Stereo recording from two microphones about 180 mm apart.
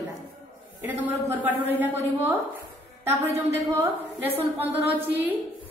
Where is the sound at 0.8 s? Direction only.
10° right (ahead or behind).